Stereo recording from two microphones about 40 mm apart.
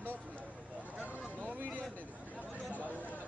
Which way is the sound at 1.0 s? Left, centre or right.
Right.